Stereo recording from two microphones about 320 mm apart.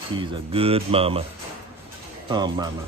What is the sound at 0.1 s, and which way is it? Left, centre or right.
Speech, centre.